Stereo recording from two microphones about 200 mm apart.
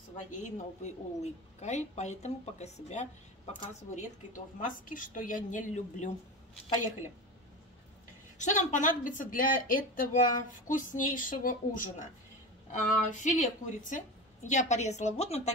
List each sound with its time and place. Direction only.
0.3 s a woman's voice: 35° left (ahead or behind)
8.4 s a woman's voice: 35° left (ahead or behind)
13.2 s a woman's voice: 40° left (ahead or behind)